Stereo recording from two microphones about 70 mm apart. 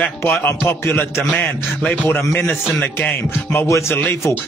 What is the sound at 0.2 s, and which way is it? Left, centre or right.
Speech, left.